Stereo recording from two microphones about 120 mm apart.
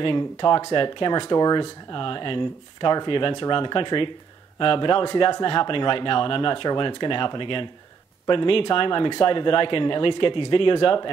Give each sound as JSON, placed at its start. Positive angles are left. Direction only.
{"t": 0.0, "sound": "speech", "side_deg": 40}